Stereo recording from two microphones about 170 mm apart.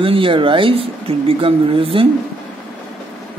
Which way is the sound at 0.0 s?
30° right (ahead or behind).